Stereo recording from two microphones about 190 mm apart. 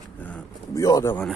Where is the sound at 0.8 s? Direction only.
20° left (ahead or behind).